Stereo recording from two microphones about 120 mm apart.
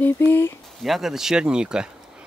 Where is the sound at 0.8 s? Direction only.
Centre (ahead or behind).